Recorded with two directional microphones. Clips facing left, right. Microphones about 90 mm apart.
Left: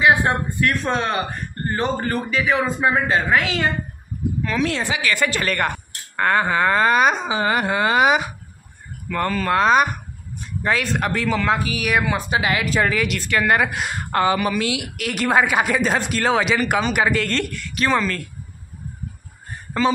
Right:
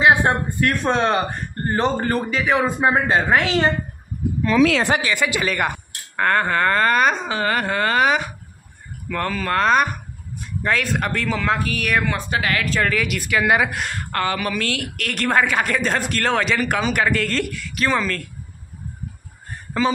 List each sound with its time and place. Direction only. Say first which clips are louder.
0.0 s speech: right 1 dB; 25° right (ahead or behind)
5.1 s speech: even; 5° right (ahead or behind)
6.2 s speech: even; 5° left (ahead or behind)
13.0 s speech: even; 5° right (ahead or behind)
13.8 s speech: left 4 dB; 15° left (ahead or behind); by 18.2 s centre (ahead or behind)